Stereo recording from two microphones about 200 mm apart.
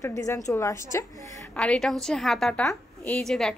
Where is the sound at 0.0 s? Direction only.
15° left (ahead or behind).